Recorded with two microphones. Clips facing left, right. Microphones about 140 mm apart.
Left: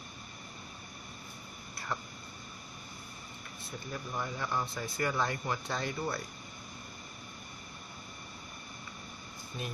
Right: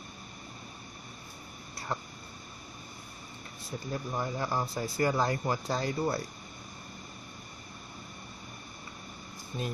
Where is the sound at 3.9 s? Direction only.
35° right (ahead or behind).